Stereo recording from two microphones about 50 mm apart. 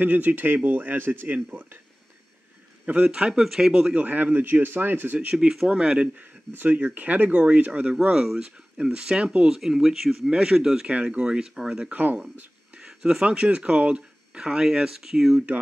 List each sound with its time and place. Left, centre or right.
0.0 s speech: right
2.8 s speech: right
3.9 s speech: right
5.3 s speech: centre
6.1 s speech: right
9.6 s speech: centre
10.3 s speech: centre
10.9 s speech: right
11.9 s speech: right
12.7 s speech: centre